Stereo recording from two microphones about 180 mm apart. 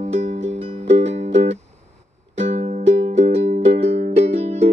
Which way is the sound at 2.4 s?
40° right (ahead or behind).